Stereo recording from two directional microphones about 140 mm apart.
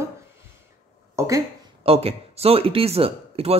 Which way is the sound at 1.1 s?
20° right (ahead or behind).